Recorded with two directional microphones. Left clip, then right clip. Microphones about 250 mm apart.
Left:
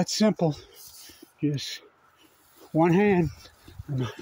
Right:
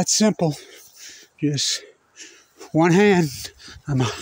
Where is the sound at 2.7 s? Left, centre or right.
Right.